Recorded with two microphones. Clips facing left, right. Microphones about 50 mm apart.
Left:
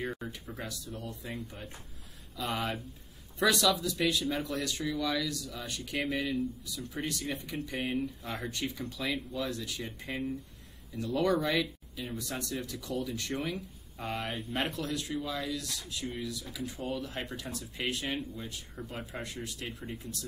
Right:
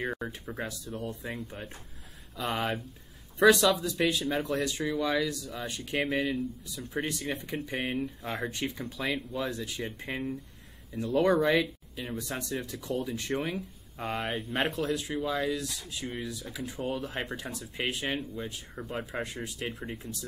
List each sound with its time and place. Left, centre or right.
0.1 s speech: right
6.1 s speech: centre
6.7 s speech: right
14.0 s speech: centre
14.7 s speech: right
18.8 s speech: centre
19.2 s speech: right